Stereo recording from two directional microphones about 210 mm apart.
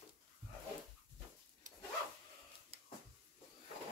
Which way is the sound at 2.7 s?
30° right (ahead or behind).